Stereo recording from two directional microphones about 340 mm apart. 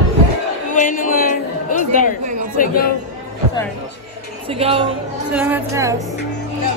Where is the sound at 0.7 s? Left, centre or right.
Left.